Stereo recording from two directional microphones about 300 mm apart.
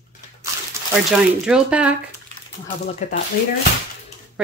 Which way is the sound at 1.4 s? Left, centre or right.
Centre.